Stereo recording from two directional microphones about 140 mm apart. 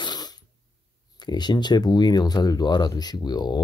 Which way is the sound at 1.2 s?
30° left (ahead or behind).